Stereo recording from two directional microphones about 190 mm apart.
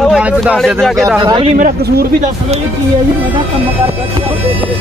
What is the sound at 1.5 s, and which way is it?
Speech, 50° right (ahead or behind).